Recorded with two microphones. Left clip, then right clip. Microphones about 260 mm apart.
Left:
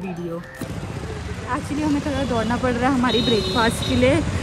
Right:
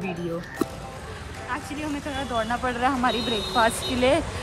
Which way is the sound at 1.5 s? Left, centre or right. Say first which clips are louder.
Left 7 dB; centre.